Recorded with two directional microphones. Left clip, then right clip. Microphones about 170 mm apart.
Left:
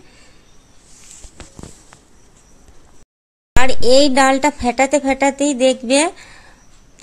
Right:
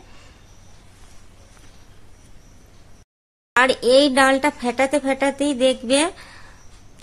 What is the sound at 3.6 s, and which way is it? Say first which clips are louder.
Speech: left 2 dB; 20° left (ahead or behind).